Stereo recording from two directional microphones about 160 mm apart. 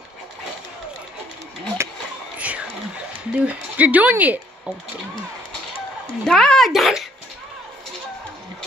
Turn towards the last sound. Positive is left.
turn(degrees=0)  # may be behind; listen again after turning